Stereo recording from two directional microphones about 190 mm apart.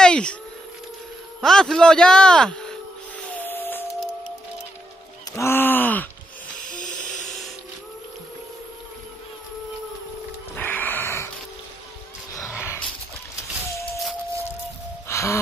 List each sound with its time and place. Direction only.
0.0 s dog: 5° left (ahead or behind)
1.4 s speech: centre (ahead or behind)
3.3 s a sound: 10° left (ahead or behind)
5.3 s groan: 15° left (ahead or behind)
6.7 s music: 40° left (ahead or behind)
10.5 s music: 10° left (ahead or behind)
12.4 s a sound: 10° right (ahead or behind)
13.7 s a sound: 15° left (ahead or behind)
15.0 s gasp: 15° left (ahead or behind)